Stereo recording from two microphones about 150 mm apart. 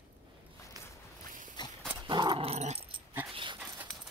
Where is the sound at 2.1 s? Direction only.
30° right (ahead or behind).